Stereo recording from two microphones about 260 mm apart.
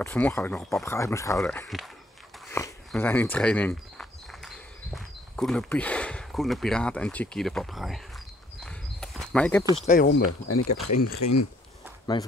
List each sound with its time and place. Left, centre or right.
0.0 s speech: centre
2.5 s a sound: centre
4.9 s speech: centre
8.5 s a sound: centre
9.8 s speech: left
10.7 s speech: left
12.1 s speech: centre